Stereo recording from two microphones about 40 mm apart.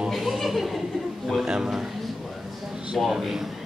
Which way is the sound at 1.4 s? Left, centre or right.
Centre.